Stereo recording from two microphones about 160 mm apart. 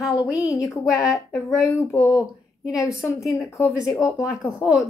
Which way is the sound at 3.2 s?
Centre (ahead or behind).